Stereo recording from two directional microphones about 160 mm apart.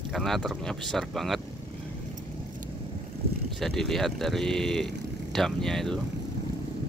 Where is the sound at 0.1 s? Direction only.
Centre (ahead or behind).